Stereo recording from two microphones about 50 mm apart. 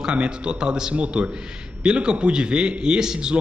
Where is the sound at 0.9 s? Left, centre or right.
Right.